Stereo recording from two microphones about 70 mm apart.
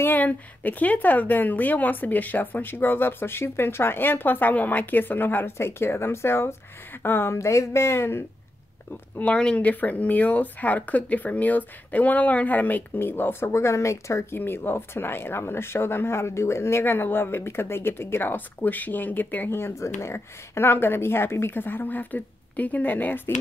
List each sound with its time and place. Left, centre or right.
0.0 s a woman's voice: left
9.1 s a woman's voice: centre; by 14.4 s left
14.4 s speech: left